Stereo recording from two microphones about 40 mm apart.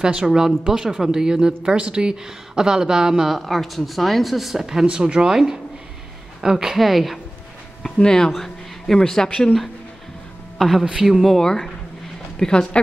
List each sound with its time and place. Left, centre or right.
0.0 s speech: right
3.3 s speech: centre
4.8 s speech: right
6.8 s speech: centre
8.0 s a woman's voice: centre
10.6 s speech: centre
11.0 s speech: centre
11.2 s speech: centre